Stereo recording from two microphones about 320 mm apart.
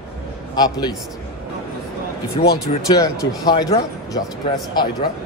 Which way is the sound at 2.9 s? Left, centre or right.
Centre.